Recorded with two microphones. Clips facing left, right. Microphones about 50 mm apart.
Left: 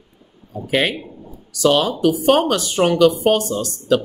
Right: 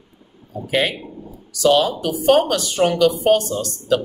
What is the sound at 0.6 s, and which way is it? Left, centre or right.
Speech, left.